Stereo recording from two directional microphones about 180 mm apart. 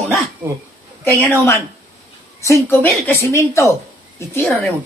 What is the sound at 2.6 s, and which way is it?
Speech, 10° left (ahead or behind).